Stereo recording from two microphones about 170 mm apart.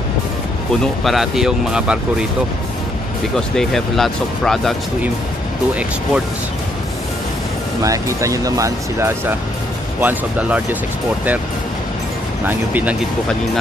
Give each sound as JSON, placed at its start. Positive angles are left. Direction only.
{"t": 1.0, "sound": "speech", "side_deg": 0}
{"t": 3.3, "sound": "speech", "side_deg": 0}
{"t": 7.8, "sound": "speech", "side_deg": -20}
{"t": 12.4, "sound": "speech", "side_deg": -10}